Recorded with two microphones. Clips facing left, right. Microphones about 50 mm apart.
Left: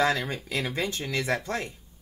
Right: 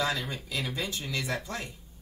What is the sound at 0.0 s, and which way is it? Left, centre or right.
Speech, left.